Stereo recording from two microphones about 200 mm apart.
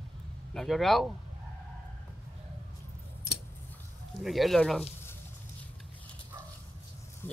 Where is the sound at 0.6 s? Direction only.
Centre (ahead or behind).